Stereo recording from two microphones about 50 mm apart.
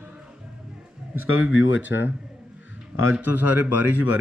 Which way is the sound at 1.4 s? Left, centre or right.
Right.